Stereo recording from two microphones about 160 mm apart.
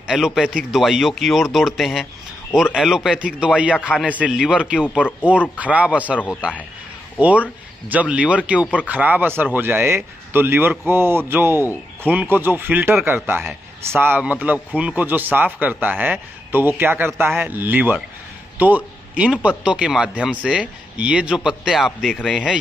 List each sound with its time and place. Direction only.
0.0 s speech: 5° right (ahead or behind)
4.8 s speech: 10° left (ahead or behind)
5.2 s a man's voice: 10° right (ahead or behind)
7.2 s a man's voice: 10° right (ahead or behind)